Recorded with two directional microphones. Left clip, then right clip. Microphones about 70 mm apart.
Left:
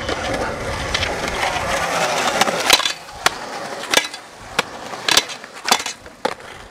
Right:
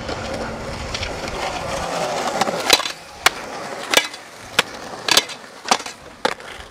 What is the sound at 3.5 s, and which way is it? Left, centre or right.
Skateboard, left.